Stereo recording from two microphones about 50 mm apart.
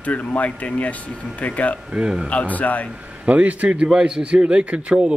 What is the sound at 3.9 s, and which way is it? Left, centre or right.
Speech, centre.